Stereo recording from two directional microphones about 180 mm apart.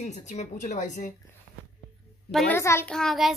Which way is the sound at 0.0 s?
40° left (ahead or behind).